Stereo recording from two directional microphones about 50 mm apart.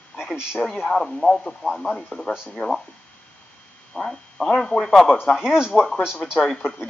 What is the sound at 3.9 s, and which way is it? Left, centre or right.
Speech, centre.